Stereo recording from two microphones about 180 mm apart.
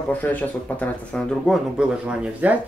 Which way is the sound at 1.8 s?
5° right (ahead or behind).